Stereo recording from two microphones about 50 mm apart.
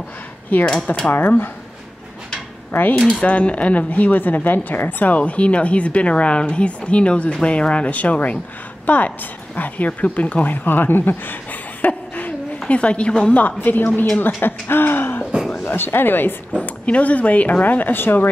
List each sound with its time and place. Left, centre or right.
0.5 s speech: left
2.7 s speech: left
3.2 s a woman's voice: left
11.8 s a sound: left
12.6 s speech: left
13.6 s speech: left
16.6 s speech: left